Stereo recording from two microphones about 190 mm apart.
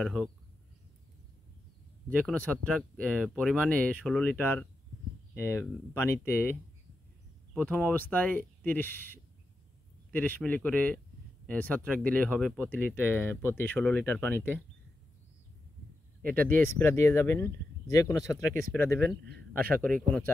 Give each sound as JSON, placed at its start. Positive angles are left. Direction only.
{"t": 0.0, "sound": "speech", "side_deg": 0}
{"t": 2.0, "sound": "speech", "side_deg": 5}
{"t": 16.2, "sound": "speech", "side_deg": -50}
{"t": 16.6, "sound": "speech", "side_deg": 15}
{"t": 18.9, "sound": "a man's voice", "side_deg": -60}
{"t": 19.8, "sound": "speech", "side_deg": 5}